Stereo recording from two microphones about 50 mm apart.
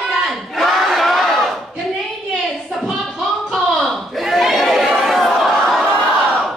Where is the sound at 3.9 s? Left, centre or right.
Centre.